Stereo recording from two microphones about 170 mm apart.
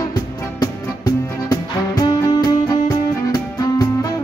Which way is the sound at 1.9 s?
25° left (ahead or behind).